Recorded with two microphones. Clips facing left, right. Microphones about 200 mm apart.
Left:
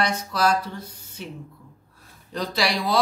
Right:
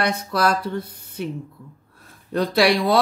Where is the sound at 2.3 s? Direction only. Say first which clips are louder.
Right 7 dB; 60° right (ahead or behind).